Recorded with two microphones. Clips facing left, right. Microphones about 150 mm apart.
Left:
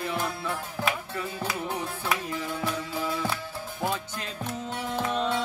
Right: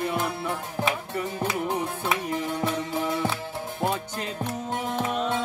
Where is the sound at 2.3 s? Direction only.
20° right (ahead or behind).